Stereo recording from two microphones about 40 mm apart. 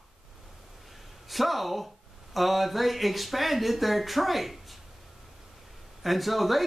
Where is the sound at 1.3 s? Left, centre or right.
Centre.